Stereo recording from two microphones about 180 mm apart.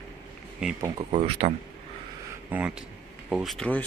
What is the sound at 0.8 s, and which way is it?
Speech, 30° right (ahead or behind).